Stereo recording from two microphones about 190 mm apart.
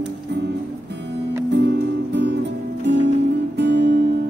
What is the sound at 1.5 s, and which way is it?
Music, 60° right (ahead or behind).